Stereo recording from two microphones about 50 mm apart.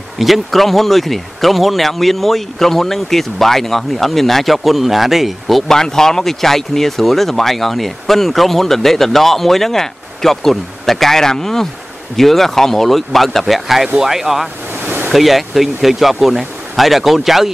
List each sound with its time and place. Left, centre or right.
0.2 s speech: centre
5.7 s speech: centre
14.7 s a sound: right
15.1 s speech: centre